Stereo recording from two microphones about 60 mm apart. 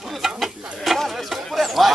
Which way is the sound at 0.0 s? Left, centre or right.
Centre.